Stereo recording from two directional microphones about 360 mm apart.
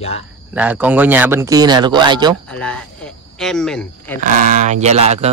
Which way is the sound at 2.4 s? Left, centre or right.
Centre.